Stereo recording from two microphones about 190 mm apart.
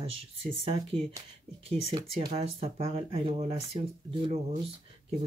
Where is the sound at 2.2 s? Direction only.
25° right (ahead or behind).